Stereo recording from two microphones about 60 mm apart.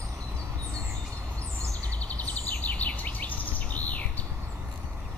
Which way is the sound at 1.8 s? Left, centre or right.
Left.